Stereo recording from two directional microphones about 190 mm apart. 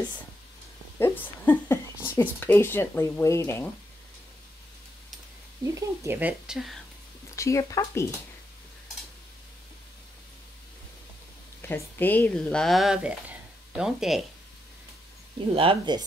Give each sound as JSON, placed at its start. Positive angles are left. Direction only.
{"t": 0.9, "sound": "speech", "side_deg": 10}
{"t": 5.8, "sound": "speech", "side_deg": -10}
{"t": 7.3, "sound": "speech", "side_deg": 15}
{"t": 11.6, "sound": "speech", "side_deg": 10}
{"t": 15.4, "sound": "speech", "side_deg": -30}